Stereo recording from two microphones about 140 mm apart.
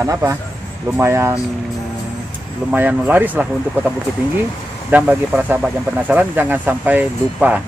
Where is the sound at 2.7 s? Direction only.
10° right (ahead or behind).